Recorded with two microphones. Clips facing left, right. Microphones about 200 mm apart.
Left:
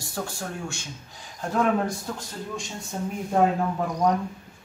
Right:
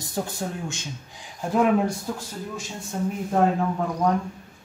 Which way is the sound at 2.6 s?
Centre (ahead or behind).